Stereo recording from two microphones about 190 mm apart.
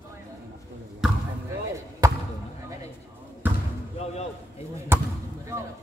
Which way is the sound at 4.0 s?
35° left (ahead or behind).